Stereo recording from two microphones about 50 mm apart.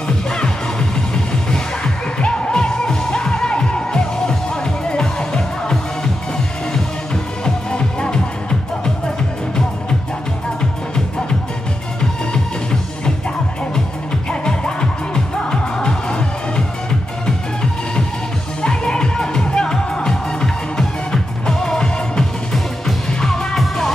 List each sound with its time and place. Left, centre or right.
0.3 s music: centre
7.4 s music: centre
14.4 s music: centre
18.6 s music: centre